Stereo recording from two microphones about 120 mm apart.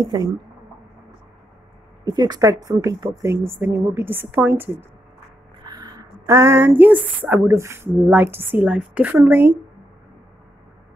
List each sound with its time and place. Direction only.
0.0 s speech: 35° right (ahead or behind)
2.0 s a woman's voice: 35° right (ahead or behind); by 4.6 s 15° right (ahead or behind)
5.7 s a woman's voice: 35° right (ahead or behind); by 9.6 s 15° right (ahead or behind)